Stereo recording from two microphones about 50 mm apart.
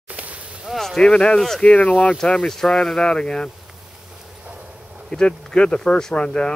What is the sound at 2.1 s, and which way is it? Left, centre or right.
Speech, centre.